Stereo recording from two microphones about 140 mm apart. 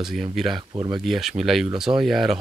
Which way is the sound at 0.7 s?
30° right (ahead or behind).